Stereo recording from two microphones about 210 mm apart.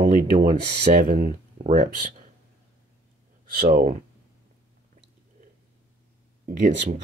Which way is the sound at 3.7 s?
40° right (ahead or behind).